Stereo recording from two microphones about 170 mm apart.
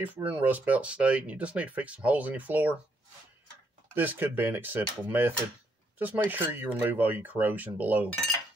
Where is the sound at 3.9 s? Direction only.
10° right (ahead or behind).